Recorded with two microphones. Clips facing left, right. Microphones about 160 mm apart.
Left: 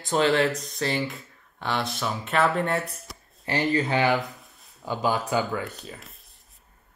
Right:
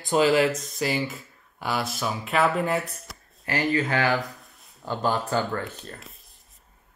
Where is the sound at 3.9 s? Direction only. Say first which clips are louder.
Left 1 dB; 20° left (ahead or behind).